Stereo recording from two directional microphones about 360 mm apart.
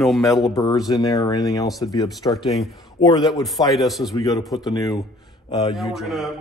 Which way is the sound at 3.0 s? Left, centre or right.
Centre.